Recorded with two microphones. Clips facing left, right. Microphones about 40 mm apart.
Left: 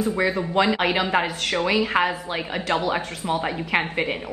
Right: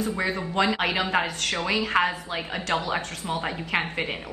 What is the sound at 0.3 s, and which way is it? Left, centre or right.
A woman's voice, centre.